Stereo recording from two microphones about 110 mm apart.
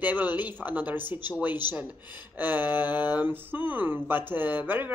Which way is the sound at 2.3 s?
15° right (ahead or behind).